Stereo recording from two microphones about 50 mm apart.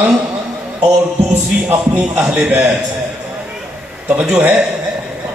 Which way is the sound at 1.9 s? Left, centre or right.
Right.